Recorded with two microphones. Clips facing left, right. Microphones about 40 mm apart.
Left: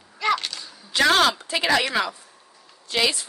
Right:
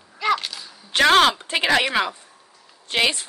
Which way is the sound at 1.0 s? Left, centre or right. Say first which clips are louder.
Right 3 dB; right.